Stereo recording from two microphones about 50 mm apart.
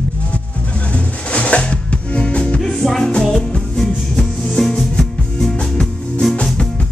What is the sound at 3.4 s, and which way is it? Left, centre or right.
Music, centre.